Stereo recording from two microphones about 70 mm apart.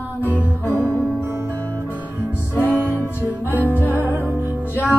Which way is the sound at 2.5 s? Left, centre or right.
Right.